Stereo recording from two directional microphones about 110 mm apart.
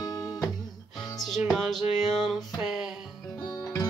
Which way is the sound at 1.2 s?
Centre (ahead or behind).